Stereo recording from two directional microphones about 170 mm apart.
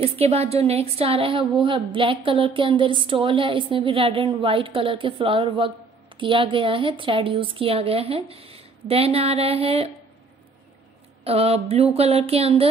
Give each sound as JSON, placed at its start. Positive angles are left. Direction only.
{"t": 0.0, "sound": "a woman's voice", "side_deg": -35}
{"t": 11.2, "sound": "a woman's voice", "side_deg": -35}